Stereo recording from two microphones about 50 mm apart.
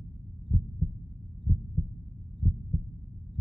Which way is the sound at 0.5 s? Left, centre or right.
Centre.